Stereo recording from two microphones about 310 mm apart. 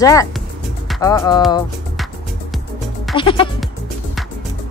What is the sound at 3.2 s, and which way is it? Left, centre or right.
Speech, centre.